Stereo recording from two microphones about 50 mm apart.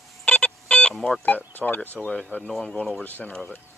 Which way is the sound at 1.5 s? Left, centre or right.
Left.